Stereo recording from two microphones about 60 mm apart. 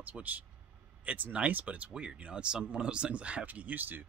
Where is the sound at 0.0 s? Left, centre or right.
Right.